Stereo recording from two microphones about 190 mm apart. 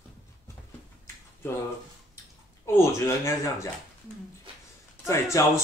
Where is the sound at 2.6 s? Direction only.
15° left (ahead or behind).